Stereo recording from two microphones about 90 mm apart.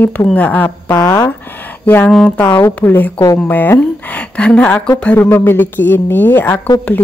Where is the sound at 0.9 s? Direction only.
35° left (ahead or behind).